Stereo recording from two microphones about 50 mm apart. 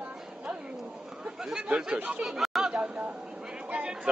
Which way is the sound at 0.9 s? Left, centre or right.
Centre.